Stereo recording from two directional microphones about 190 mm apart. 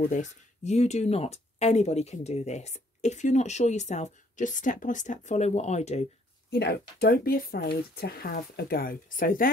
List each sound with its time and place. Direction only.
0.0 s speech: 35° left (ahead or behind)
6.5 s speech: 55° left (ahead or behind)